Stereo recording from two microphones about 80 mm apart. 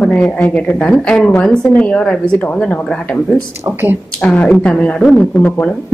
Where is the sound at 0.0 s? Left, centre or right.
Centre.